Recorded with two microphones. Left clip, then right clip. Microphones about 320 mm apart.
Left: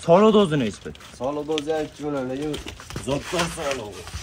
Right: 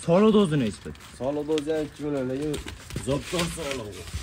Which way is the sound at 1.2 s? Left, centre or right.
Left.